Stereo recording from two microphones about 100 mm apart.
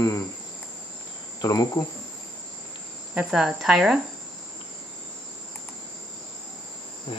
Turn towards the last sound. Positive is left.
turn(degrees=65)  # may be behind; listen again after turning